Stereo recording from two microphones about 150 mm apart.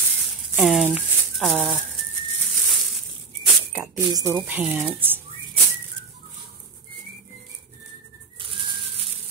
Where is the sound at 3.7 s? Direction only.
20° right (ahead or behind).